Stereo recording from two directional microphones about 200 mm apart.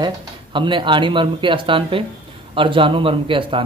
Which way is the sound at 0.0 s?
25° right (ahead or behind).